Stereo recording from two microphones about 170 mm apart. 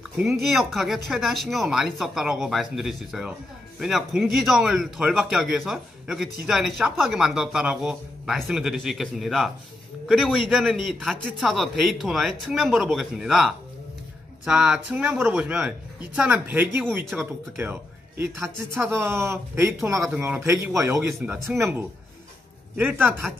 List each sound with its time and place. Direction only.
0.2 s a man's voice: centre (ahead or behind)
19.8 s speech: 5° right (ahead or behind)
22.8 s speech: 10° right (ahead or behind)